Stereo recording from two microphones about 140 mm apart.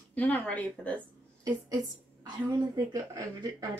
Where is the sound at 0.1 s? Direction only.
10° left (ahead or behind).